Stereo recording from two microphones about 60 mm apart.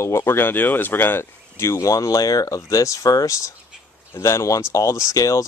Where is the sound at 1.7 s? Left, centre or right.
Left.